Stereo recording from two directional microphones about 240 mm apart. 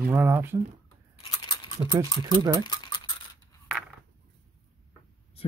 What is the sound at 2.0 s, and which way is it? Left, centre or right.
Speech, centre.